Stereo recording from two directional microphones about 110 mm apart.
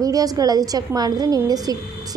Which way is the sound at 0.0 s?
35° right (ahead or behind).